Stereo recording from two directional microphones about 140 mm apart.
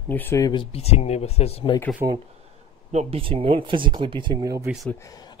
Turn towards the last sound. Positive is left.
turn(degrees=25)  # may be behind; listen again after turning